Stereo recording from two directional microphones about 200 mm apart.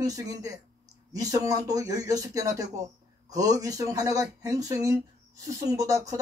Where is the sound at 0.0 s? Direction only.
15° right (ahead or behind).